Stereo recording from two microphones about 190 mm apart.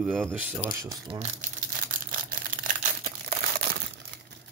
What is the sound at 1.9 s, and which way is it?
Crumpling, 45° right (ahead or behind).